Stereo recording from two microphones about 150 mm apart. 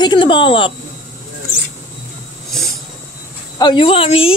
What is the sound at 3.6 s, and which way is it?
Speech, 35° left (ahead or behind).